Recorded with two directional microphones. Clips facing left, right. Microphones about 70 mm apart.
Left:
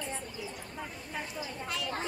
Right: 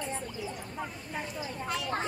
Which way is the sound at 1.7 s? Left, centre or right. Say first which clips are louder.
Right 4 dB; right.